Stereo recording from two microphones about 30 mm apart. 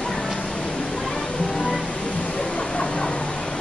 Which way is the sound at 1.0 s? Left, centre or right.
Left.